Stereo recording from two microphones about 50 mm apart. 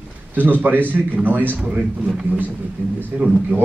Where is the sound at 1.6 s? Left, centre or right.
Right.